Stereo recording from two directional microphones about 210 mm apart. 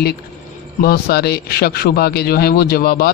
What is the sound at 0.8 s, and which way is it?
Speech, 45° left (ahead or behind).